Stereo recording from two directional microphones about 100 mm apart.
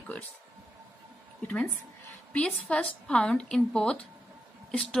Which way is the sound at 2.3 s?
10° left (ahead or behind).